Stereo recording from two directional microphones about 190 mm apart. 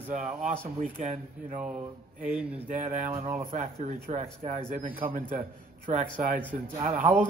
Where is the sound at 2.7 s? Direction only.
40° right (ahead or behind).